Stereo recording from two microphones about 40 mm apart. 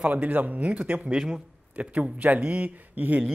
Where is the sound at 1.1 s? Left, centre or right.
Centre.